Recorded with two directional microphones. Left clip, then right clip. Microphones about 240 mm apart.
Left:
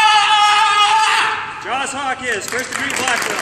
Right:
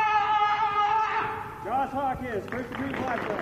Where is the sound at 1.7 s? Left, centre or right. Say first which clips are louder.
Left 6 dB; centre.